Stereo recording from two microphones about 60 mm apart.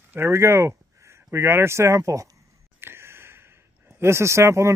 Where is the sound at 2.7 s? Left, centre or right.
Right.